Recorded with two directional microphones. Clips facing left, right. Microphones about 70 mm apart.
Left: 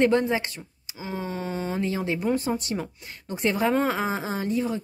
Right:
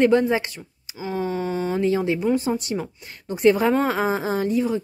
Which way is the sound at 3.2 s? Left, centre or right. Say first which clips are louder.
Right 9 dB; right.